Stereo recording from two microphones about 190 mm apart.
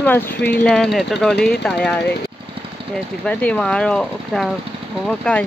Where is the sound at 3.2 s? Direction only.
5° left (ahead or behind).